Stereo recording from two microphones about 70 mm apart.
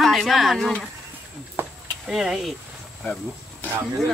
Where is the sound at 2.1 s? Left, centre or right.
Centre.